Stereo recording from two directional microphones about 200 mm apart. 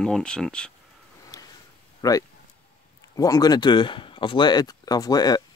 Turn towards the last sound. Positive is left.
turn(degrees=20)  # may be behind; listen again after turning